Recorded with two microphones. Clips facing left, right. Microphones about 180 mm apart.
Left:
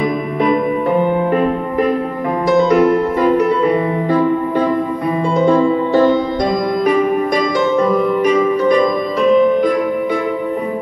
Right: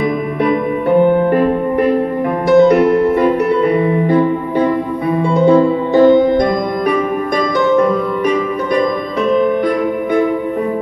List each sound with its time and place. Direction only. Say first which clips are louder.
0.4 s music: left 1 dB; 60° right (ahead or behind)
5.5 s music: right 2 dB; 15° right (ahead or behind)
6.1 s music: right 5 dB; 55° right (ahead or behind)